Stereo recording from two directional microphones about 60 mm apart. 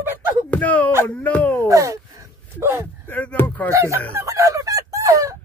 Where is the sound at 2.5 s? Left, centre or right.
Right.